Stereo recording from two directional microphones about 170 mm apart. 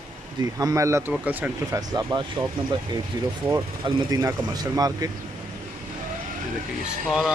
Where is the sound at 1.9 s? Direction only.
20° right (ahead or behind).